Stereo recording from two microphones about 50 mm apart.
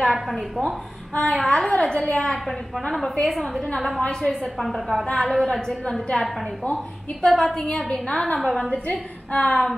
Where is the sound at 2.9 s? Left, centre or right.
Centre.